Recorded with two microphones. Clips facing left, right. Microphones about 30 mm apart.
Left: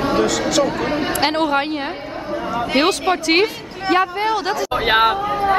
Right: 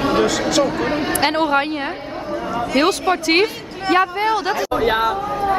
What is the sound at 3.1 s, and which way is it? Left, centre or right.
Speech, centre.